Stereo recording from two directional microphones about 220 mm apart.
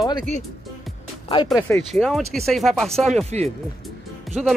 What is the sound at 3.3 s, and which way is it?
Speech, 30° right (ahead or behind).